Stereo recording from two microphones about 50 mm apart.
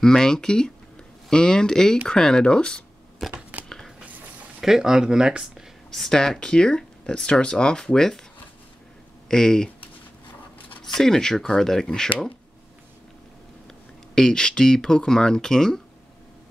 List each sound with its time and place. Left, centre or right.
0.0 s speech: centre
3.2 s a sound: centre
3.6 s biting: centre
4.6 s speech: centre
5.9 s speech: centre
9.3 s speech: centre
10.9 s speech: centre
14.1 s speech: centre